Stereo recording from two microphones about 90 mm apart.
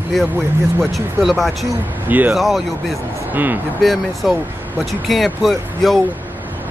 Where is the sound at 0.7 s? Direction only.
Centre (ahead or behind).